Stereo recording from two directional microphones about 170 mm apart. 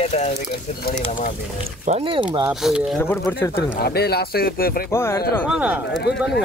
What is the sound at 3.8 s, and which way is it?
Speech, 70° left (ahead or behind).